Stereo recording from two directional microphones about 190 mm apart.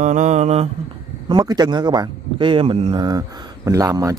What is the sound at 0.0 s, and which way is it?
Mantra, 40° right (ahead or behind).